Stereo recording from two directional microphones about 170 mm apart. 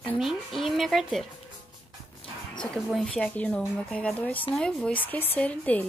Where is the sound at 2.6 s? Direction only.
Centre (ahead or behind).